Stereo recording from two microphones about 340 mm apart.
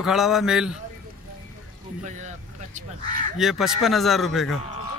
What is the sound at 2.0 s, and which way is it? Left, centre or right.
Speech, right.